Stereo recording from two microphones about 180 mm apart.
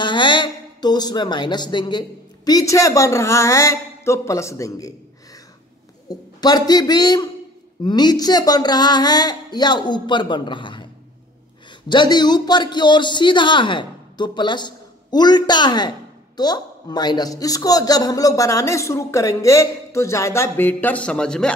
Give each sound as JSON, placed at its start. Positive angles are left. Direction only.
{"t": 0.0, "sound": "speech", "side_deg": 25}
{"t": 6.0, "sound": "a man's voice", "side_deg": 20}
{"t": 11.9, "sound": "a woman's voice", "side_deg": 25}